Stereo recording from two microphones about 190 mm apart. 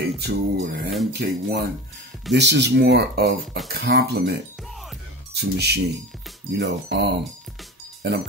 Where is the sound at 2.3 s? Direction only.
65° right (ahead or behind).